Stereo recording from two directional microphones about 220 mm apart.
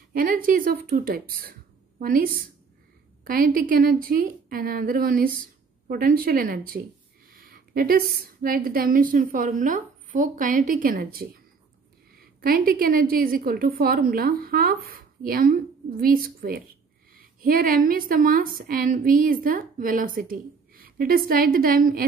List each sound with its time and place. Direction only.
0.1 s a woman's voice: 40° right (ahead or behind)